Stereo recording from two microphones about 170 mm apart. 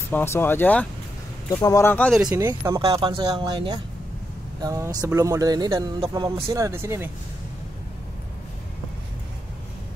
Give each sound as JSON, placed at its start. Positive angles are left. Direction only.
{"t": 0.1, "sound": "speech", "side_deg": 15}
{"t": 2.2, "sound": "speech", "side_deg": -15}
{"t": 2.8, "sound": "speech", "side_deg": -30}